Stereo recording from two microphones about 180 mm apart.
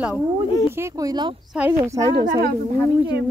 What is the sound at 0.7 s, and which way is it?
Speech, 20° right (ahead or behind).